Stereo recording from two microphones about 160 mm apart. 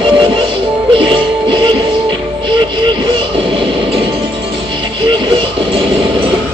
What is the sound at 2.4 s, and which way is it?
Train, 30° right (ahead or behind).